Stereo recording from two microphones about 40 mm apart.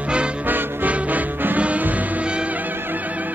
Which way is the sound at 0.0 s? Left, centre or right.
Right.